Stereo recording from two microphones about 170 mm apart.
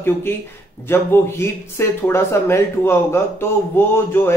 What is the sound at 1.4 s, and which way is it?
A man's voice, 15° left (ahead or behind).